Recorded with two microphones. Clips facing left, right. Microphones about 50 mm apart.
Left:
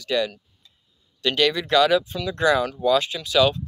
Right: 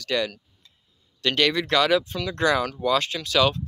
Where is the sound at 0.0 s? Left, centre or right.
Right.